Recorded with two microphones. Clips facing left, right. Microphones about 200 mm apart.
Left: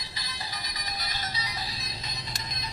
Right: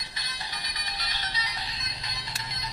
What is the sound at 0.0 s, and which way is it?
Music, 35° left (ahead or behind).